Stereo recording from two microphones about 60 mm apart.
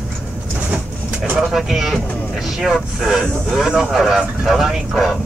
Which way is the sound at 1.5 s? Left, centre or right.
Centre.